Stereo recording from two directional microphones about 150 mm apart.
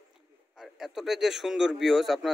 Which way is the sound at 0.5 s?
Centre (ahead or behind).